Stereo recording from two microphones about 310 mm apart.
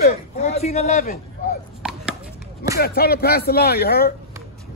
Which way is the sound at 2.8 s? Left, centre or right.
Left.